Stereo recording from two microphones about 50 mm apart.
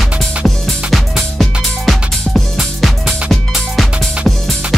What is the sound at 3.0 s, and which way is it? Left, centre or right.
Music, right.